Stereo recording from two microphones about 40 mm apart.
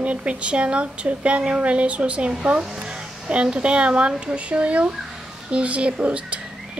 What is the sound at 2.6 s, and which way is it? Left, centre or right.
Speech, centre.